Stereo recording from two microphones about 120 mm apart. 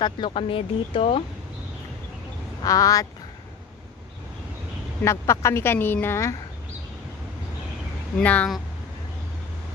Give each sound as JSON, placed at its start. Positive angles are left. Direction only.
{"t": 0.0, "sound": "speech", "side_deg": 45}
{"t": 2.6, "sound": "a woman's voice", "side_deg": 30}
{"t": 5.0, "sound": "a woman's voice", "side_deg": 25}
{"t": 8.2, "sound": "speech", "side_deg": 10}